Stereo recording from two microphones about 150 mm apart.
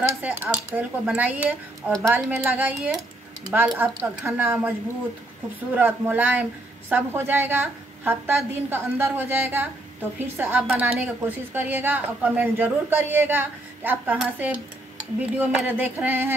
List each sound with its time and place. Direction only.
0.0 s a woman's voice: 15° right (ahead or behind)
3.7 s a woman's voice: 15° right (ahead or behind)